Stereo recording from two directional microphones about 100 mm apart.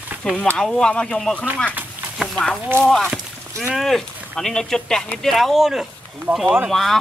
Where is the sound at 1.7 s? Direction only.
15° right (ahead or behind).